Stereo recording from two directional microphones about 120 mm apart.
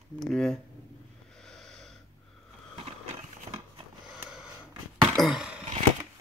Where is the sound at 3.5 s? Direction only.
30° right (ahead or behind).